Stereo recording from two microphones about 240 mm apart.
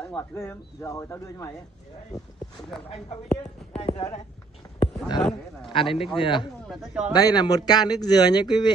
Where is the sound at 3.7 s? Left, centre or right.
Left.